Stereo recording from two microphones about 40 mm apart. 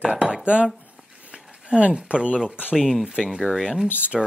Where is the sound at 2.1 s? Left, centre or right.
Right.